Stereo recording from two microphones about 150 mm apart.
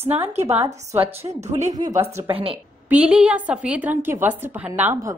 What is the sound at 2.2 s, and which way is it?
Speech, 40° right (ahead or behind).